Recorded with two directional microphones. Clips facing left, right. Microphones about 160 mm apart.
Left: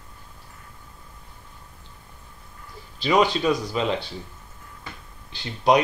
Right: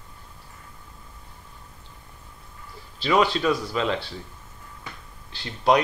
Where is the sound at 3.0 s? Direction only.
15° left (ahead or behind).